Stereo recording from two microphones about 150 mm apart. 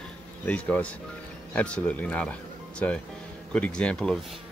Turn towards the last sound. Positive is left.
turn(degrees=5)  # may be behind; listen again after turning